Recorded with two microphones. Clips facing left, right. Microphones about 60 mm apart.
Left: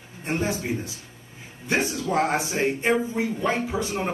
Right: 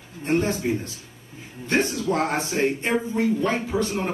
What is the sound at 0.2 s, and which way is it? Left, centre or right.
Speech, centre.